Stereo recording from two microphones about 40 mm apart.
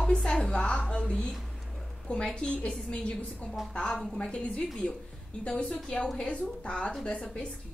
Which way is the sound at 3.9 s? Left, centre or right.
Centre.